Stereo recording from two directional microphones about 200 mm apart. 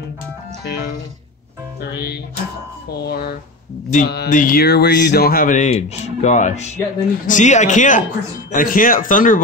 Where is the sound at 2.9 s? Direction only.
55° left (ahead or behind).